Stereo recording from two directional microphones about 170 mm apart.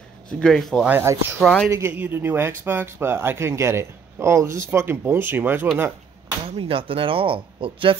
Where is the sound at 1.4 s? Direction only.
5° left (ahead or behind).